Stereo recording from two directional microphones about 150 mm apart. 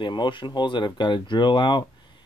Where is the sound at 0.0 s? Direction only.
30° left (ahead or behind).